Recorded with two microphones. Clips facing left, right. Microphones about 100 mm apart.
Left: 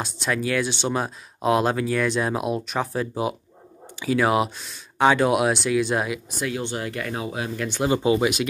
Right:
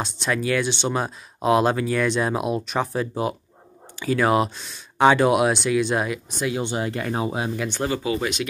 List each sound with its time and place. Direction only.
0.0 s speech: centre (ahead or behind)
6.5 s speech: 20° right (ahead or behind)
7.6 s speech: 5° left (ahead or behind)
7.9 s speech: 25° left (ahead or behind)
8.2 s speech: 5° left (ahead or behind)